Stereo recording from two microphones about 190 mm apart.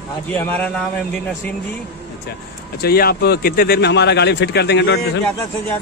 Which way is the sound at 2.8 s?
55° left (ahead or behind).